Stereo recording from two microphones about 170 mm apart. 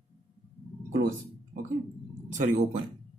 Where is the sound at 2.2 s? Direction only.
45° right (ahead or behind).